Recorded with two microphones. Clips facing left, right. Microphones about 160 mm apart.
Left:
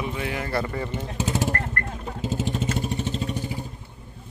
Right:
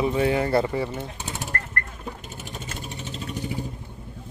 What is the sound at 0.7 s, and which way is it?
Speech, 10° right (ahead or behind).